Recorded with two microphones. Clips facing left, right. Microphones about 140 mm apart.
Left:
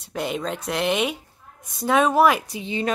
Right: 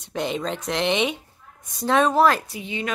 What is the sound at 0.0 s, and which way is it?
A woman's voice, 5° left (ahead or behind).